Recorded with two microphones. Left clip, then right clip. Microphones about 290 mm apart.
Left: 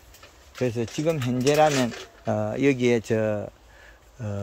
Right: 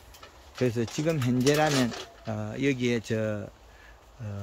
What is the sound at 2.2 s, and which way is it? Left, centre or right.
Speech, centre.